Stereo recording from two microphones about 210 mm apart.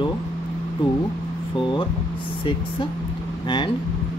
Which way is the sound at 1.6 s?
20° left (ahead or behind).